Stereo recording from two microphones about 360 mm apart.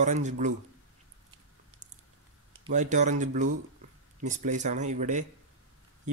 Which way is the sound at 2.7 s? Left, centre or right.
Centre.